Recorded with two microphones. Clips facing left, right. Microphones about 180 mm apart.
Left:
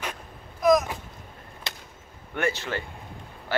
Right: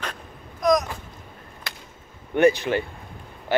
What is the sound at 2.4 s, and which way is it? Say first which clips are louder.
Speech: right 10 dB; 20° right (ahead or behind).